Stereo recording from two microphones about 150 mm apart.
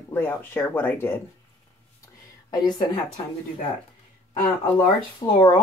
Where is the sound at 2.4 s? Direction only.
30° left (ahead or behind).